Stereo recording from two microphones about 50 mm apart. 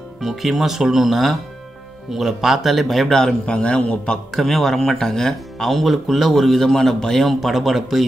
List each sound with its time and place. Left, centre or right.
0.2 s speech: centre
3.4 s a man's voice: centre
4.3 s speech: centre